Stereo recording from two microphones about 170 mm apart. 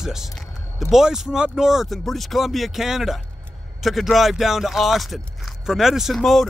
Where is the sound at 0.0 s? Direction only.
5° right (ahead or behind).